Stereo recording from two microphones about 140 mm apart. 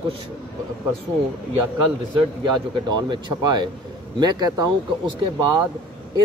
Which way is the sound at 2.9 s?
30° right (ahead or behind).